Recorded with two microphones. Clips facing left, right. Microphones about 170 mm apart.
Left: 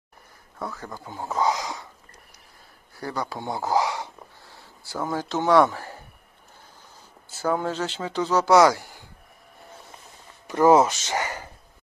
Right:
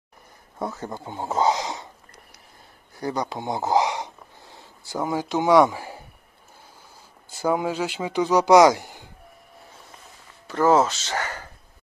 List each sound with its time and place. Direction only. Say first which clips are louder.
0.6 s speech: right 4 dB; 20° right (ahead or behind)
3.0 s a sound: right 3 dB; 20° right (ahead or behind)
7.3 s speech: right 2 dB; 10° right (ahead or behind)
10.4 s speech: left 2 dB; 15° left (ahead or behind)